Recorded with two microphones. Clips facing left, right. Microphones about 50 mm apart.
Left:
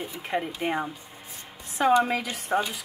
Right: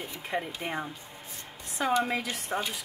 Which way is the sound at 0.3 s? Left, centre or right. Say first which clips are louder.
Left 5 dB; centre.